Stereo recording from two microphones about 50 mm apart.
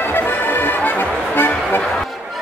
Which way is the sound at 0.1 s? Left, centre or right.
Left.